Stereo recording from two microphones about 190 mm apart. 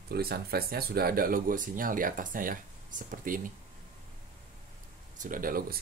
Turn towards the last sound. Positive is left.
turn(degrees=-50)  # may be behind; listen again after turning